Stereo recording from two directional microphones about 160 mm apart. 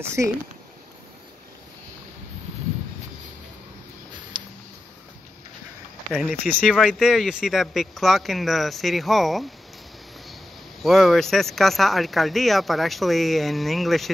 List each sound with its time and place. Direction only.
0.0 s speech: 15° right (ahead or behind)
4.3 s a sound: 30° right (ahead or behind)
6.4 s speech: 5° left (ahead or behind)
10.8 s speech: centre (ahead or behind)